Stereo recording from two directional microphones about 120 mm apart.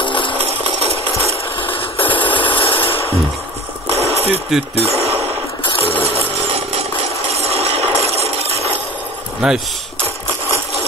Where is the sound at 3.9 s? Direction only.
55° right (ahead or behind).